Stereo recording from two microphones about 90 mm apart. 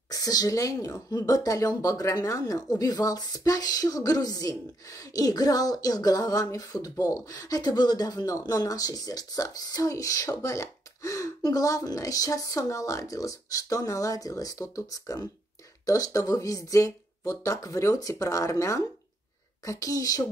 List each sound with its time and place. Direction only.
0.1 s speech: 45° left (ahead or behind)